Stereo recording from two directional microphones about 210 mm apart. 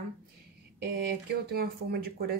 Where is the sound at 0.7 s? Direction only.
45° right (ahead or behind).